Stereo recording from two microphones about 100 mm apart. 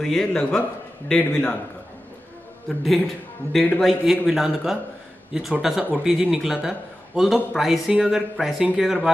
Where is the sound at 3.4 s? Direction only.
25° right (ahead or behind).